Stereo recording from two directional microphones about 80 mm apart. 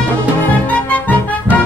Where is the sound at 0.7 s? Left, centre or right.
Centre.